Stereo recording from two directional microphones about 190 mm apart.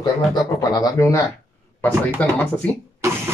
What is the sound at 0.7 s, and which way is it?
Speech, 15° left (ahead or behind).